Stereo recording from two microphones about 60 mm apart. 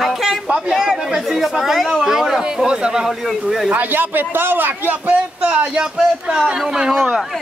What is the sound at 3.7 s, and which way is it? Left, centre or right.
A man's voice, right.